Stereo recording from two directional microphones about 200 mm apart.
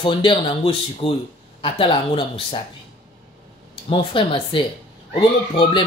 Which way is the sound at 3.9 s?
25° left (ahead or behind).